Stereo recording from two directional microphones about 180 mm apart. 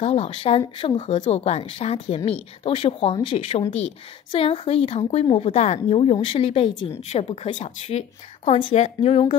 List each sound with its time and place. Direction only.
0.0 s speech: 35° left (ahead or behind)